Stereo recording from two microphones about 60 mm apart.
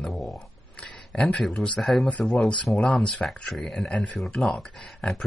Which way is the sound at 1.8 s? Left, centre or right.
Centre.